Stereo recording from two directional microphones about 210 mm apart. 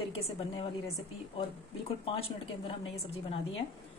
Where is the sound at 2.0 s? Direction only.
25° left (ahead or behind).